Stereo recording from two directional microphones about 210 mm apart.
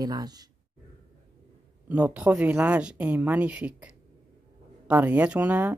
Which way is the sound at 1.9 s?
5° right (ahead or behind).